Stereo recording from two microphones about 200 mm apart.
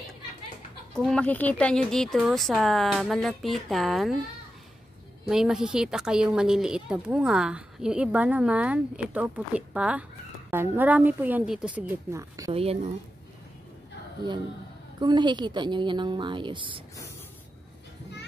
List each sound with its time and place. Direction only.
0.9 s a woman's voice: 5° left (ahead or behind)
5.3 s a woman's voice: 5° right (ahead or behind)
15.0 s a woman's voice: 20° right (ahead or behind)